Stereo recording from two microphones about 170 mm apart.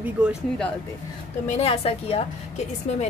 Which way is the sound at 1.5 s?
35° left (ahead or behind).